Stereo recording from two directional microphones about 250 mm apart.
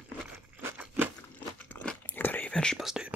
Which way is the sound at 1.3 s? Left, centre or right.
Centre.